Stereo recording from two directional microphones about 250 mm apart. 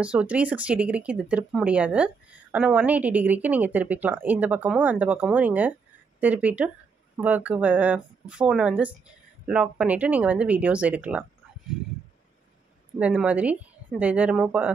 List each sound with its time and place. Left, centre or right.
0.0 s speech: centre
13.0 s speech: centre